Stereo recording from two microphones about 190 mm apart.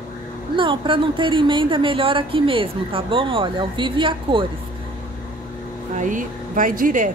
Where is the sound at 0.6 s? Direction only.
25° right (ahead or behind).